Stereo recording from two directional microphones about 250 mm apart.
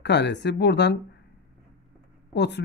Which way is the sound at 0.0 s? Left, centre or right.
Left.